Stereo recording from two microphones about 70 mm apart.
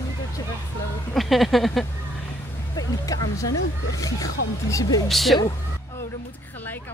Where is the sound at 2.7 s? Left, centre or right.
Left.